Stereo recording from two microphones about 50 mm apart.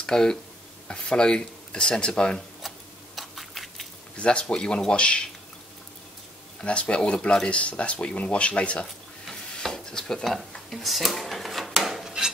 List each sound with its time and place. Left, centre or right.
0.0 s speech: centre
3.2 s a sound: centre
4.2 s speech: left
6.6 s speech: left
9.3 s dishes: centre
10.7 s drawer open or close: centre